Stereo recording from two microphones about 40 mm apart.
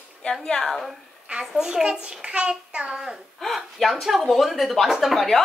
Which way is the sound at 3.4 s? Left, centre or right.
Centre.